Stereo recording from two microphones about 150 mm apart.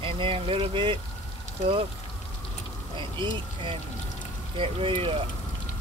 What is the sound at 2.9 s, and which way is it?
Speech, 35° right (ahead or behind).